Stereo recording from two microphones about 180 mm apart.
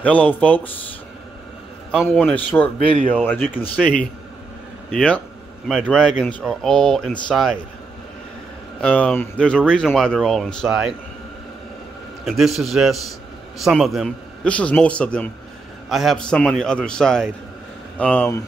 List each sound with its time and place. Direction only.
0.0 s speech: 5° left (ahead or behind)
2.0 s speech: 5° left (ahead or behind)
8.8 s speech: 5° left (ahead or behind)
12.3 s speech: centre (ahead or behind)